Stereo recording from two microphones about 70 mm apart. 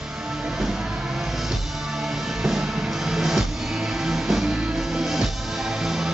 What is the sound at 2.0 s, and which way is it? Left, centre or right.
Music, centre.